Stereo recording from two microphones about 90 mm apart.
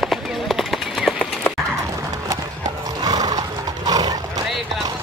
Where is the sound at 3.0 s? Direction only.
45° right (ahead or behind).